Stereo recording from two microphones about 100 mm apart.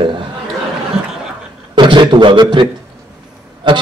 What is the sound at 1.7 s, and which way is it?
A man's voice, 50° right (ahead or behind).